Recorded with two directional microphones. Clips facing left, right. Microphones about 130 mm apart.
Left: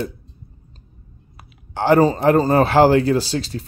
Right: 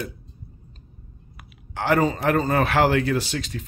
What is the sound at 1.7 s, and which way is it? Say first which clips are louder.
Speech: left 6 dB; 30° left (ahead or behind).